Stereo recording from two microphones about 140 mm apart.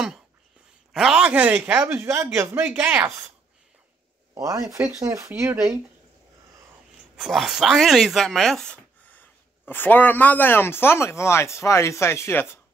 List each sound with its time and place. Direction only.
0.9 s speech: 5° right (ahead or behind)
4.4 s speech: 25° right (ahead or behind)
7.2 s speech: centre (ahead or behind); by 12.4 s 15° left (ahead or behind)